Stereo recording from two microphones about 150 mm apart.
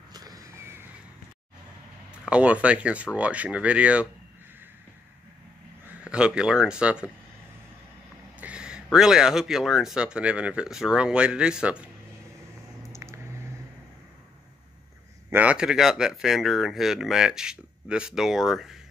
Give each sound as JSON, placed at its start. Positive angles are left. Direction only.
{"t": 0.1, "sound": "crow", "side_deg": -25}
{"t": 2.2, "sound": "speech", "side_deg": -10}
{"t": 6.0, "sound": "speech", "side_deg": -5}
{"t": 8.4, "sound": "a sound", "side_deg": -10}
{"t": 8.8, "sound": "speech", "side_deg": -5}
{"t": 12.9, "sound": "a sound", "side_deg": -20}
{"t": 15.2, "sound": "speech", "side_deg": -10}